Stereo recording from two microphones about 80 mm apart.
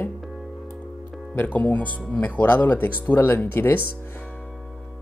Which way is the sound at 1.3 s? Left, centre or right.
Left.